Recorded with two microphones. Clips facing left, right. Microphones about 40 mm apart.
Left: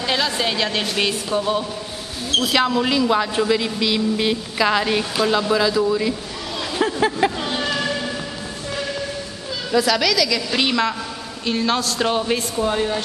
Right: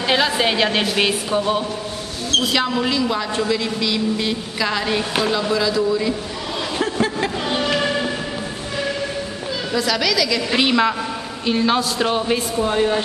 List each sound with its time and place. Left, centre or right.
0.0 s a woman's voice: centre
2.3 s a woman's voice: centre
6.8 s a sound: centre
7.4 s music: centre
7.8 s train: centre
9.7 s a woman's voice: centre